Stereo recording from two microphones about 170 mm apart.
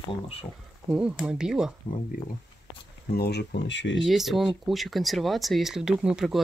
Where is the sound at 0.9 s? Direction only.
5° right (ahead or behind).